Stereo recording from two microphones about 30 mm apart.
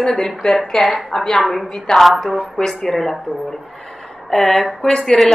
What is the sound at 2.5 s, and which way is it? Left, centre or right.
Speech, centre.